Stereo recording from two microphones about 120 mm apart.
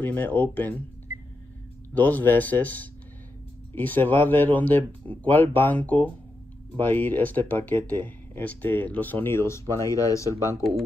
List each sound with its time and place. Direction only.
0.0 s speech: 15° left (ahead or behind)
2.0 s speech: 15° left (ahead or behind)